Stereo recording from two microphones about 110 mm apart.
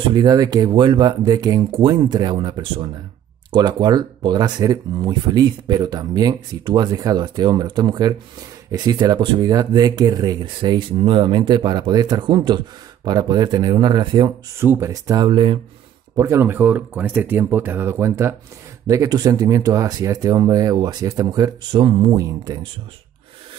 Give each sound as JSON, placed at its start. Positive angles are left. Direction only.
{"t": 0.1, "sound": "speech", "side_deg": -40}
{"t": 1.7, "sound": "speech", "side_deg": -45}
{"t": 14.6, "sound": "speech", "side_deg": -25}
{"t": 15.2, "sound": "speech", "side_deg": -45}
{"t": 16.2, "sound": "speech", "side_deg": -25}
{"t": 21.7, "sound": "speech", "side_deg": -50}